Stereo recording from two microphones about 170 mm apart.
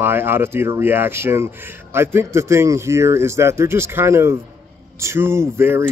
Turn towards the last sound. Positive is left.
turn(degrees=-15)  # may be behind; listen again after turning